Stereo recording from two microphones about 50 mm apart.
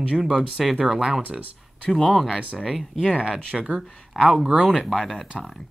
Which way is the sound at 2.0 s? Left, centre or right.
Centre.